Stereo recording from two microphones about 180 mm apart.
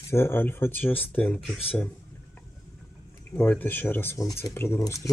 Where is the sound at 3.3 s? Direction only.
10° left (ahead or behind).